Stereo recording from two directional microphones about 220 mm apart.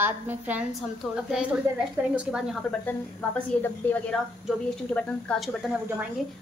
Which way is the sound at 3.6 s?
10° left (ahead or behind).